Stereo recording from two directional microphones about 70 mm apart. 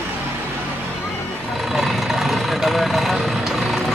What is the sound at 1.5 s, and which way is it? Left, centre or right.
Vehicle, centre.